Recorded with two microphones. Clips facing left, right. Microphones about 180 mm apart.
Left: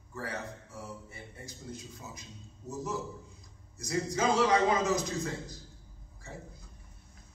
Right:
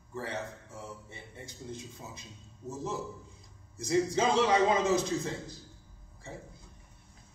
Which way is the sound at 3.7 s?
30° right (ahead or behind).